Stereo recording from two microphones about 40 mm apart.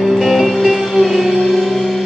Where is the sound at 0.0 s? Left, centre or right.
Centre.